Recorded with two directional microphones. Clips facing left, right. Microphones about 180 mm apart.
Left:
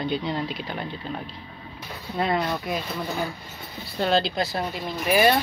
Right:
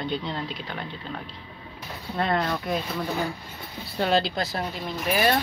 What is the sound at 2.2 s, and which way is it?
Speech, 5° left (ahead or behind).